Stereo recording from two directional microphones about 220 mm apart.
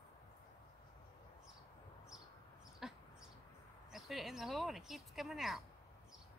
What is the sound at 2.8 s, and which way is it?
Dog, centre (ahead or behind).